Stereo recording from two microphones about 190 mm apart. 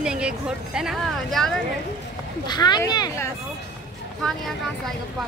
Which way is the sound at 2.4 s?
20° left (ahead or behind).